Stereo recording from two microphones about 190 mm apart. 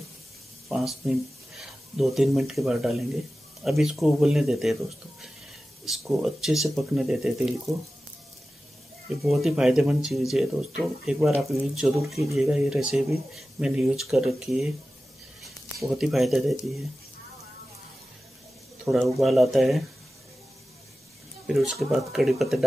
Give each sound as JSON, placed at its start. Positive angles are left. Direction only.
{"t": 0.7, "sound": "speech", "side_deg": 0}
{"t": 5.9, "sound": "speech", "side_deg": 0}
{"t": 9.2, "sound": "speech", "side_deg": 0}
{"t": 15.8, "sound": "speech", "side_deg": 0}
{"t": 18.9, "sound": "speech", "side_deg": 0}
{"t": 21.5, "sound": "speech", "side_deg": 0}